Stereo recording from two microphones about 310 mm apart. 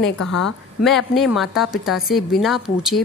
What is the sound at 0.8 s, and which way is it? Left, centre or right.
A woman's voice, centre.